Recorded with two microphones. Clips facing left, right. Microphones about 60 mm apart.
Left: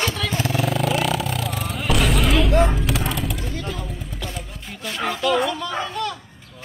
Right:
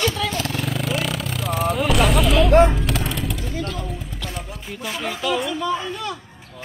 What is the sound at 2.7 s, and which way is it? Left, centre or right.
Music, centre.